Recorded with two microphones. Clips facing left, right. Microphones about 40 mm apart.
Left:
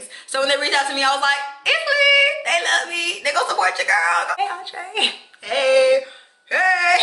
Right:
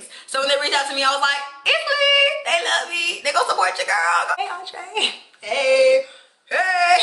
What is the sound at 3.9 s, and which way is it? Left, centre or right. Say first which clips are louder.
Speech: left 2 dB; left.